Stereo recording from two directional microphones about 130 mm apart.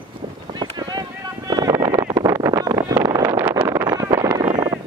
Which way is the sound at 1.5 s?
30° right (ahead or behind).